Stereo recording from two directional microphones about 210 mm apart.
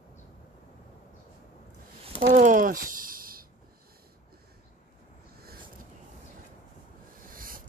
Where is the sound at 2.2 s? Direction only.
40° right (ahead or behind).